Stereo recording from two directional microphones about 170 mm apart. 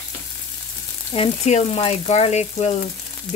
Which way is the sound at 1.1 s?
40° left (ahead or behind).